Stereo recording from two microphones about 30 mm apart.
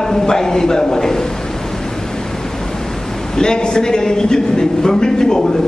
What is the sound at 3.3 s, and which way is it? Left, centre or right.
A man's voice, left.